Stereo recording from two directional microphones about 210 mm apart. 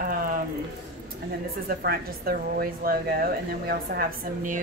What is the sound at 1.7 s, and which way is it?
A woman's voice, 45° right (ahead or behind).